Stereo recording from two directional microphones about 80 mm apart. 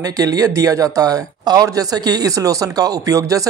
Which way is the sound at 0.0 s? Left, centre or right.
Right.